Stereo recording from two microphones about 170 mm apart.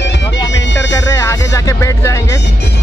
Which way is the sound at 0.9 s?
20° left (ahead or behind).